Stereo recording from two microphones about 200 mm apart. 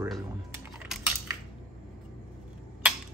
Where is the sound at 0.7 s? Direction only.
5° right (ahead or behind).